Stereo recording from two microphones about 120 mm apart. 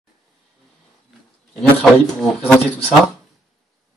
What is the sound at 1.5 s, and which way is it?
A man's voice, 5° left (ahead or behind).